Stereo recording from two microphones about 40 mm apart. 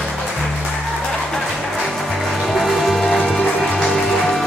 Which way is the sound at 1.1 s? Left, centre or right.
Centre.